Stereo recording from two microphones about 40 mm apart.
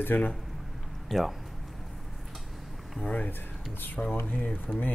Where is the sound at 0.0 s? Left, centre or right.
Left.